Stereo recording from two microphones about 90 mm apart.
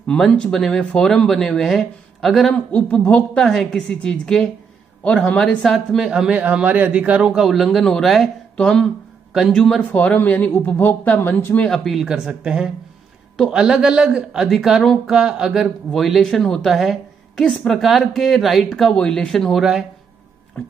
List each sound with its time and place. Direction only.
0.0 s speech: 10° left (ahead or behind)
2.7 s a woman's voice: 15° left (ahead or behind)
11.6 s speech: 5° left (ahead or behind)